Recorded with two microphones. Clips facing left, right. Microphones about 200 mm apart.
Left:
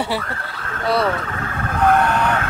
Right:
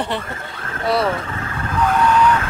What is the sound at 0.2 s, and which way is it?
Speech, 20° right (ahead or behind).